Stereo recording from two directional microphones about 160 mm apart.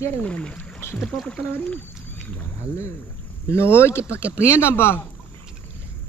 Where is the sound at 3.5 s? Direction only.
15° left (ahead or behind).